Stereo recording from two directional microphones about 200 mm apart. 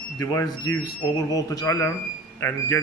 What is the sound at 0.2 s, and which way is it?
Speech, 15° left (ahead or behind).